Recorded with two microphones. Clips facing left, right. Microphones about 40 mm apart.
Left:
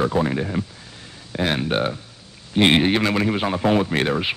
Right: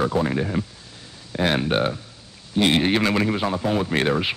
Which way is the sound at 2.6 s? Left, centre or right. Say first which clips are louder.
Left 3 dB; left.